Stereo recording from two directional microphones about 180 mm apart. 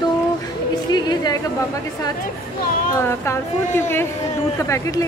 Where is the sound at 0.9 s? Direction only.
20° left (ahead or behind).